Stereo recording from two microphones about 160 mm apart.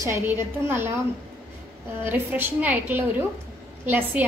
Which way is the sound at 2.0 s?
10° right (ahead or behind).